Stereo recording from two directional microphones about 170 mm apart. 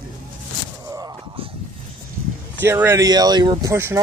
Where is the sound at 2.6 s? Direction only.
15° right (ahead or behind).